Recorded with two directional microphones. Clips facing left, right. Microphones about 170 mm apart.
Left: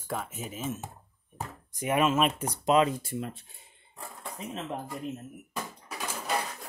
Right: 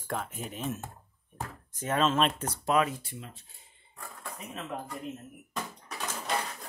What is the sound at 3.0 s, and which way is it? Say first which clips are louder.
Speech: left 10 dB; 45° left (ahead or behind).